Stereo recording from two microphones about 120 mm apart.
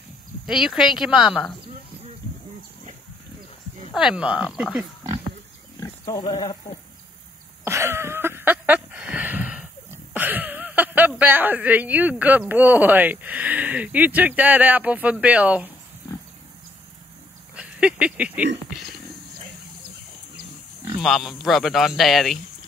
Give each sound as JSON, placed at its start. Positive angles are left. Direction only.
{"t": 0.5, "sound": "speech", "side_deg": -5}
{"t": 3.9, "sound": "speech", "side_deg": -5}
{"t": 6.0, "sound": "speech", "side_deg": 35}
{"t": 7.6, "sound": "a sound", "side_deg": -20}
{"t": 17.6, "sound": "speech", "side_deg": -10}
{"t": 21.0, "sound": "speech", "side_deg": 0}